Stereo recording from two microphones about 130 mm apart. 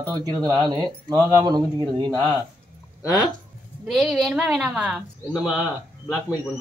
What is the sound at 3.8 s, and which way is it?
A woman's voice, centre (ahead or behind).